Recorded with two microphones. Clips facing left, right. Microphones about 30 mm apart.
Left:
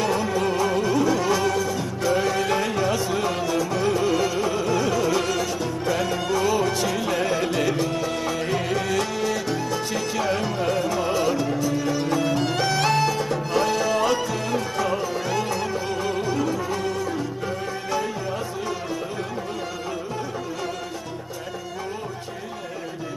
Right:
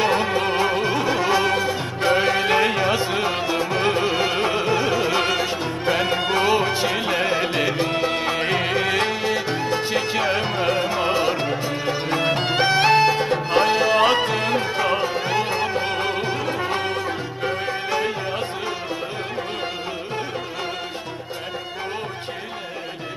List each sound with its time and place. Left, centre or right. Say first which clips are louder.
0.0 s music: right 3 dB; right